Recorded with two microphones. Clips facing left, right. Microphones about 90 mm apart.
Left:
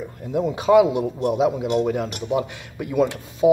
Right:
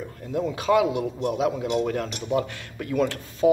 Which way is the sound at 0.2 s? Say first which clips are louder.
Left 4 dB; 20° left (ahead or behind).